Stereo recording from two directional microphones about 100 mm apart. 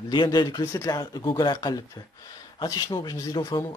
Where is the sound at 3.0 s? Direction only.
35° left (ahead or behind).